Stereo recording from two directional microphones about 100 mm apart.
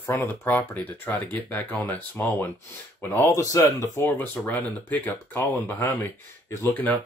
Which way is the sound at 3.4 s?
35° left (ahead or behind).